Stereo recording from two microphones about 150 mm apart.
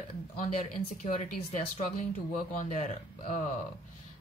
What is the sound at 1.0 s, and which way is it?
Speech, 55° left (ahead or behind).